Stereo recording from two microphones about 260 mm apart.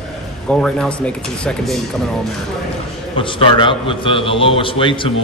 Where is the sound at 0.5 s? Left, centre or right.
Centre.